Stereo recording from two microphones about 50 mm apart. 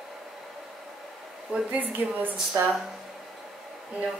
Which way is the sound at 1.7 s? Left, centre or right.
Right.